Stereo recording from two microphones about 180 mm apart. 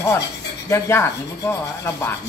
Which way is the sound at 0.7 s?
15° left (ahead or behind).